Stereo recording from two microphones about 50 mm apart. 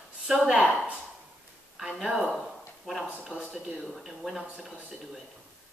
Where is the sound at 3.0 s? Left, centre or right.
Right.